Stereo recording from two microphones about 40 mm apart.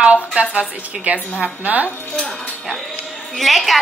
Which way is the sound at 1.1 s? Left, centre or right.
Right.